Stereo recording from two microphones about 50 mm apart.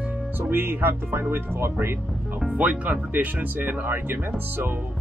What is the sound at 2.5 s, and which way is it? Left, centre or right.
Speech, right.